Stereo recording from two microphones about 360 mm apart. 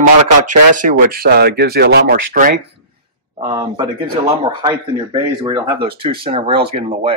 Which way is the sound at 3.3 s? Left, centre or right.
Centre.